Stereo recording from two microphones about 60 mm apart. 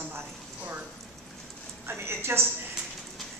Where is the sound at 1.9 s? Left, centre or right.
Right.